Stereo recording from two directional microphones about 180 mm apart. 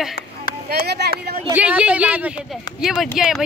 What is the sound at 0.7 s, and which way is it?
Speech, 65° right (ahead or behind).